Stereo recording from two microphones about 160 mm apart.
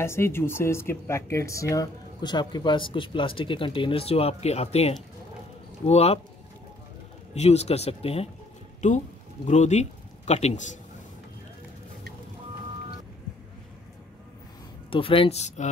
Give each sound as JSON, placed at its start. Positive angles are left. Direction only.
{"t": 0.0, "sound": "speech", "side_deg": 15}
{"t": 7.3, "sound": "speech", "side_deg": 40}
{"t": 9.5, "sound": "a man's voice", "side_deg": 45}
{"t": 14.9, "sound": "speech", "side_deg": 35}